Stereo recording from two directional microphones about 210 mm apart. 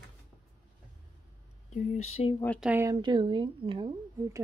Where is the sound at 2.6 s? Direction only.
10° right (ahead or behind).